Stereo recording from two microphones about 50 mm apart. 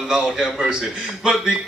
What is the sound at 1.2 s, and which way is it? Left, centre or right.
Speech, centre.